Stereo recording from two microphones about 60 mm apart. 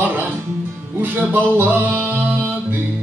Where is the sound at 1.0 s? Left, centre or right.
Right.